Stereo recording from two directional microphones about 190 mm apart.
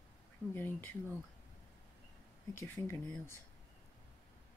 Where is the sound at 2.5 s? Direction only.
10° left (ahead or behind).